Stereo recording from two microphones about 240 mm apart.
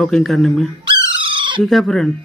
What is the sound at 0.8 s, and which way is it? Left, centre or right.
Bird, right.